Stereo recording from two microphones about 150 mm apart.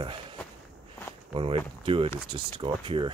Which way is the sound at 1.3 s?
35° right (ahead or behind).